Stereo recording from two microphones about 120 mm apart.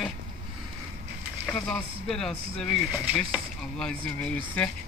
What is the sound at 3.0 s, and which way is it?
Speech, 15° right (ahead or behind).